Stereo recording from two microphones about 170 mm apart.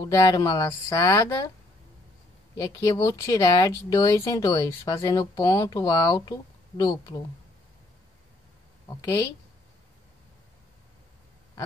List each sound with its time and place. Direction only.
0.1 s speech: 20° left (ahead or behind)
2.8 s speech: 20° left (ahead or behind)
8.8 s a woman's voice: 15° left (ahead or behind)